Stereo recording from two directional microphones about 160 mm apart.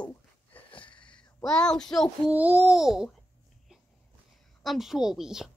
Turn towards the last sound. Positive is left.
turn(degrees=-5)  # may be behind; listen again after turning